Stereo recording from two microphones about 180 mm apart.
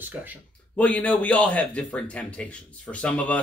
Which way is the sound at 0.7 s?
10° left (ahead or behind).